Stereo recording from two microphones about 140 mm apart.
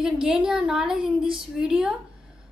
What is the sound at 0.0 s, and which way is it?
A woman's voice, 5° right (ahead or behind).